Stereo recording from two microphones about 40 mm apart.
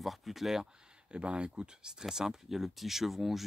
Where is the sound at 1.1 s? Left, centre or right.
Right.